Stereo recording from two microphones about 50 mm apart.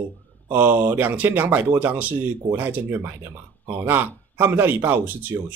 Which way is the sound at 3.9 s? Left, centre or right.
Right.